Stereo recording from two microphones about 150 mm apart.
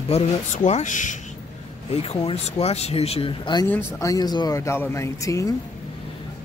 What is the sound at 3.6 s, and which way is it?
Speech, 20° left (ahead or behind).